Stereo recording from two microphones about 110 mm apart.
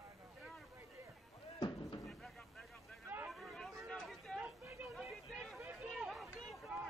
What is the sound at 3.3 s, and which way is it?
Chatter, centre (ahead or behind).